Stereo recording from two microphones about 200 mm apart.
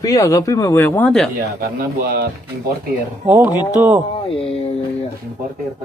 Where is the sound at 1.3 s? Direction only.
50° right (ahead or behind).